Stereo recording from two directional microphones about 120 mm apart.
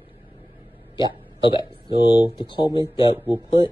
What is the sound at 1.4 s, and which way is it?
Speech, 45° left (ahead or behind).